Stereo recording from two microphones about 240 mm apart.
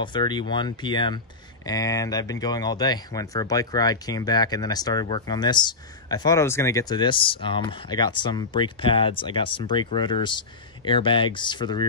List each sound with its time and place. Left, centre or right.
0.0 s speech: centre